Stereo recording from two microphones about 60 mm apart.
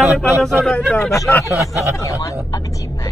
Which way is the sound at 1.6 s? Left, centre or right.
Left.